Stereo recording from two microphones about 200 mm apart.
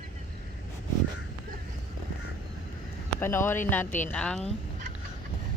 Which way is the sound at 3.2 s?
10° left (ahead or behind).